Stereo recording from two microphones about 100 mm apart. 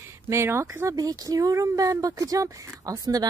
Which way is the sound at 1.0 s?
35° right (ahead or behind).